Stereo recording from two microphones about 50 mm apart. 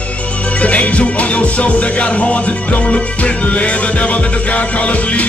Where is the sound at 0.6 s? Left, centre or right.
Left.